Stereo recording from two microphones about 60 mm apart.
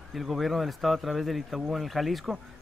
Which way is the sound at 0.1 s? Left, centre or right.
Centre.